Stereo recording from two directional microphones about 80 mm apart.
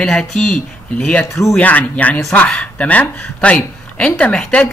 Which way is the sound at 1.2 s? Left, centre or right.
Left.